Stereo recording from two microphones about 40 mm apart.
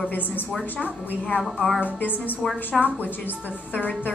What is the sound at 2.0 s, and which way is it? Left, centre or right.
Speech, left.